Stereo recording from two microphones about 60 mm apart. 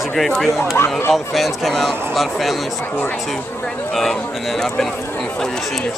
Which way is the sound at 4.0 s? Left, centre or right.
Centre.